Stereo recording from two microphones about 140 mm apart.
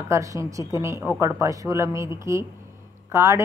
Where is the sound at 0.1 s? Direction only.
20° right (ahead or behind).